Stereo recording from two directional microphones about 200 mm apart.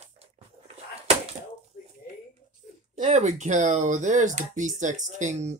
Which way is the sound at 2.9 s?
35° right (ahead or behind).